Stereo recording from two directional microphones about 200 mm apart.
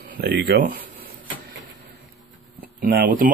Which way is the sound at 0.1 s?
50° right (ahead or behind).